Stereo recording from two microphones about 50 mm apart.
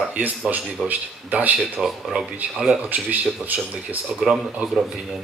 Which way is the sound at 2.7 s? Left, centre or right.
Right.